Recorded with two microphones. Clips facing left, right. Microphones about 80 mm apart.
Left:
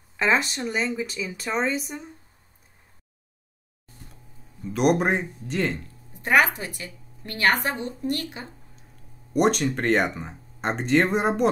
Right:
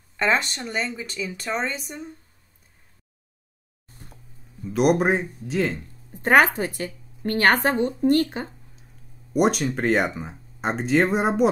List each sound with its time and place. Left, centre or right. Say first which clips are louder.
0.2 s speech: even; centre
4.6 s speech: right 2 dB; centre
6.1 s speech: right 3 dB; right
9.3 s speech: even; centre